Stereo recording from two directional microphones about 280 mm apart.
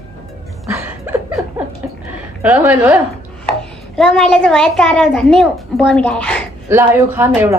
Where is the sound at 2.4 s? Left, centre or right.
Centre.